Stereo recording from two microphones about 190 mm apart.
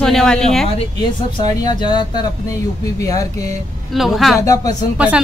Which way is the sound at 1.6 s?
20° left (ahead or behind).